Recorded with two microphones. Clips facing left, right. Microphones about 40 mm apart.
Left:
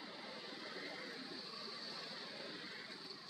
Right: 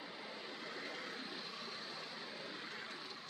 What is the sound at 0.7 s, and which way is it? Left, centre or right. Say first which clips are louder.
Vehicle: right 3 dB; right.